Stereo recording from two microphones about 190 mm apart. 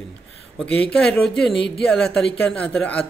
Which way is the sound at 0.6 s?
5° left (ahead or behind).